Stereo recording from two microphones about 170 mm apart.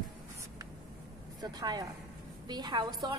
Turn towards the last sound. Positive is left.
turn(degrees=-25)  # may be behind; listen again after turning